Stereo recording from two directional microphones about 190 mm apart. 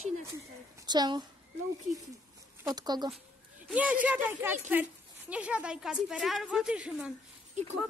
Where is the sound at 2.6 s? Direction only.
20° right (ahead or behind).